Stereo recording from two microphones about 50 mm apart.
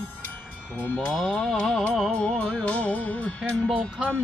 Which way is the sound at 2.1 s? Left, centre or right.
Centre.